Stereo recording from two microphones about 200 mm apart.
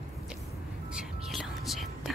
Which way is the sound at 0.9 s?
Centre (ahead or behind).